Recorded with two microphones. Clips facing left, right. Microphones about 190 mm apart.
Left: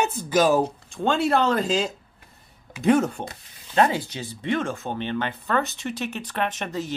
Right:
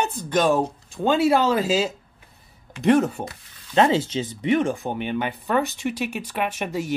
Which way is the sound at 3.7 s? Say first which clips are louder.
Right 3 dB; 25° right (ahead or behind).